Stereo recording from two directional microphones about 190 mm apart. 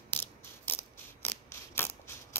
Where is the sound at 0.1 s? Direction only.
10° left (ahead or behind).